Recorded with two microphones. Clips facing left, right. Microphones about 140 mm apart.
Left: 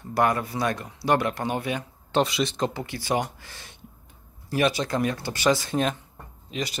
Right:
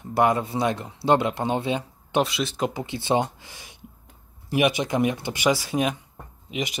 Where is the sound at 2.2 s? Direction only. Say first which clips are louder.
Even; centre (ahead or behind).